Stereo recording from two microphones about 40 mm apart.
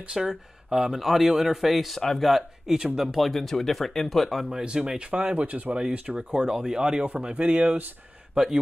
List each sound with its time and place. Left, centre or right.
0.1 s speech: centre
0.9 s speech: centre
3.2 s speech: centre
4.6 s speech: right
5.1 s speech: right
5.8 s speech: right
7.1 s speech: right